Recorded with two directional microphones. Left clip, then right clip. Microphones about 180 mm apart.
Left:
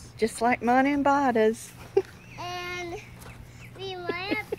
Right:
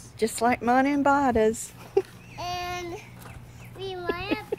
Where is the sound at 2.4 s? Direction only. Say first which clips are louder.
Right 2 dB; 50° right (ahead or behind).